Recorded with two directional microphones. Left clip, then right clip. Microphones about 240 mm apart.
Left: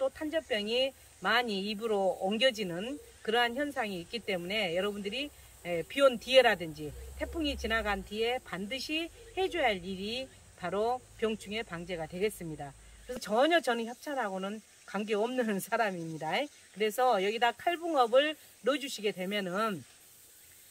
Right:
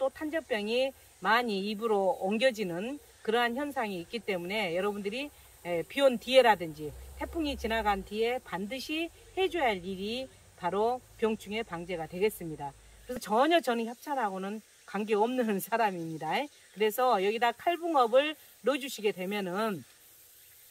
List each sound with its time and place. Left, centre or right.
0.0 s snake: centre
0.5 s speech: centre